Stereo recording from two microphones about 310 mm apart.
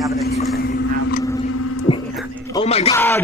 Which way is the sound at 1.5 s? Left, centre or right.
Left.